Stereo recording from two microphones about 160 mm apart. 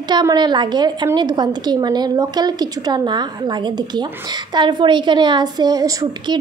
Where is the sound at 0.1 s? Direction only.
25° right (ahead or behind).